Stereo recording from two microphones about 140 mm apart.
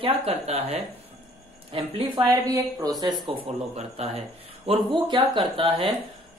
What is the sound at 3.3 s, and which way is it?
Speech, 45° right (ahead or behind).